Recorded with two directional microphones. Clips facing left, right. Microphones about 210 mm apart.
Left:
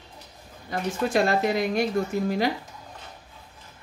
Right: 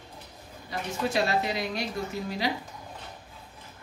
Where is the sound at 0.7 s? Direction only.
50° left (ahead or behind).